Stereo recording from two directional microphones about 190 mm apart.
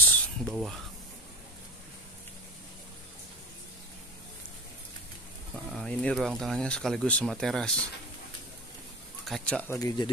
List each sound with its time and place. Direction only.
0.1 s a sound: centre (ahead or behind)
5.7 s speech: 5° left (ahead or behind)
9.2 s speech: 5° left (ahead or behind)
9.8 s speech: 20° left (ahead or behind)